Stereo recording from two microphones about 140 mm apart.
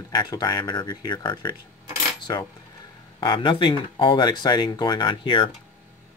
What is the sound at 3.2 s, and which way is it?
Speech, 30° left (ahead or behind).